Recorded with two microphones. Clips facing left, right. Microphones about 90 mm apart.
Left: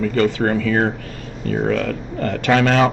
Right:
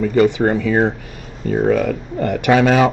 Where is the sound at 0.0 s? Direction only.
15° right (ahead or behind).